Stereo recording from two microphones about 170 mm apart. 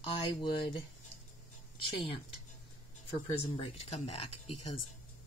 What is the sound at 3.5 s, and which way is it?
Speech, 35° left (ahead or behind).